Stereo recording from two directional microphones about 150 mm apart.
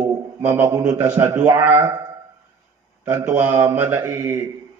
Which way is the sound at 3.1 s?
15° right (ahead or behind).